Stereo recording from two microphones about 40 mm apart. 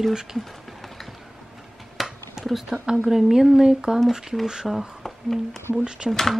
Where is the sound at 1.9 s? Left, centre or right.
Centre.